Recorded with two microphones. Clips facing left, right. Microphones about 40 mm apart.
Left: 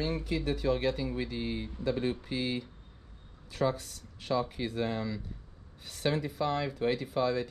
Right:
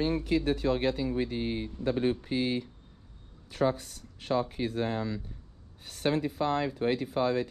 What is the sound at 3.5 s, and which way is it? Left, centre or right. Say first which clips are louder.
Speech: right 2 dB; right.